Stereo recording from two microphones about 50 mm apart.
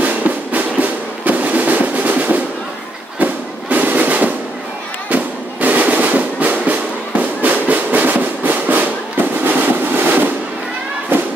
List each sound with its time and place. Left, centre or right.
0.0 s music: right
3.2 s fireworks: right
5.1 s music: right